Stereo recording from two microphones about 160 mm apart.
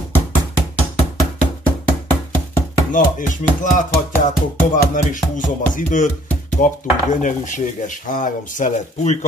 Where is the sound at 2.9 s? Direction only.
55° left (ahead or behind).